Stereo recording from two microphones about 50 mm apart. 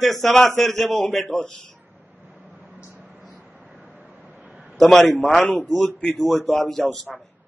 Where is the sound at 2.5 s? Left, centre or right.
Right.